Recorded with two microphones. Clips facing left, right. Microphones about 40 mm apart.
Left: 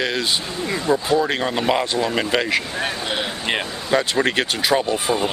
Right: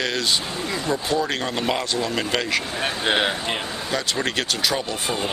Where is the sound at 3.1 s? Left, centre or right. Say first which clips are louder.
Right 4 dB; right.